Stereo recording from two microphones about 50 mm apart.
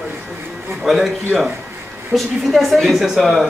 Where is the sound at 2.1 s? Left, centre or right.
Centre.